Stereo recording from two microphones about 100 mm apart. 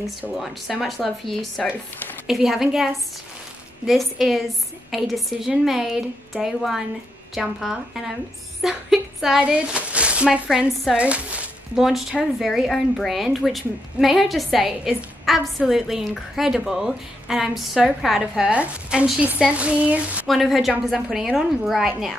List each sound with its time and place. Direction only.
0.4 s speech: centre (ahead or behind)
1.6 s speech: 15° left (ahead or behind)
2.2 s a woman's voice: centre (ahead or behind)
20.2 s speech: centre (ahead or behind)